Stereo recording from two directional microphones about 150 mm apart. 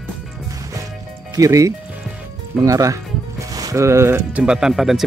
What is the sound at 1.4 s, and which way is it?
Speech, 20° right (ahead or behind).